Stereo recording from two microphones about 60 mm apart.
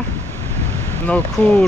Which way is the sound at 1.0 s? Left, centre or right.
Left.